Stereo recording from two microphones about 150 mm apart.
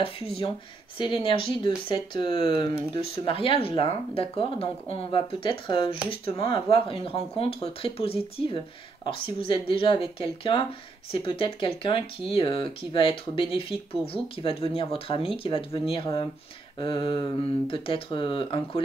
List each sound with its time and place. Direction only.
0.0 s speech: 40° left (ahead or behind)